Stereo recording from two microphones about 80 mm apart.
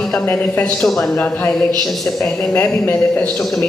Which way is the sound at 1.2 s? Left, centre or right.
Centre.